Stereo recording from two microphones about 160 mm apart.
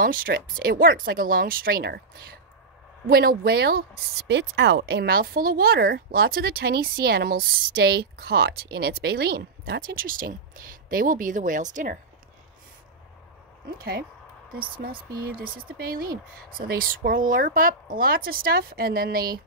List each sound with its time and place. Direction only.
0.0 s speech: 60° right (ahead or behind)
3.1 s speech: 70° right (ahead or behind); by 12.0 s 55° right (ahead or behind)
13.7 s speech: 65° right (ahead or behind)